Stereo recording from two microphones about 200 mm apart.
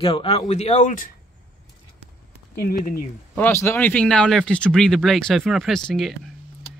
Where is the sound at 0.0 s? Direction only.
30° left (ahead or behind).